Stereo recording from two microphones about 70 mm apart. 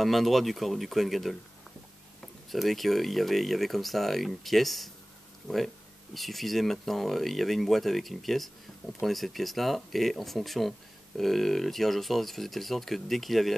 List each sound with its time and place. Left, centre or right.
0.0 s speech: centre
2.5 s speech: centre
6.1 s speech: centre